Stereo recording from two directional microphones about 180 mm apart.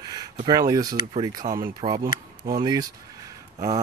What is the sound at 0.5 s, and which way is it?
Speech, 20° right (ahead or behind).